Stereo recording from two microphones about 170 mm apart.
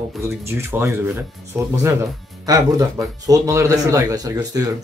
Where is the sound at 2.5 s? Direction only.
20° right (ahead or behind).